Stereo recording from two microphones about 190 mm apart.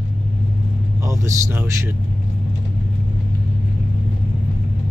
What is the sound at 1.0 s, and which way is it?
Speech, 15° right (ahead or behind).